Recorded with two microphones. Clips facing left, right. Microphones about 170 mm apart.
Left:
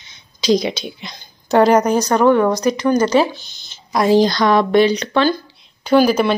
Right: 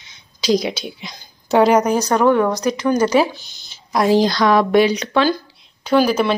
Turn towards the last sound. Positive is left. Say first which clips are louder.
# left 2 dB
turn(degrees=0)  # may be behind; listen again after turning